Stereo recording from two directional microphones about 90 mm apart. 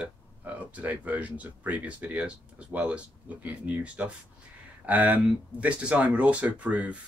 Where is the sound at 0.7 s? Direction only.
20° right (ahead or behind).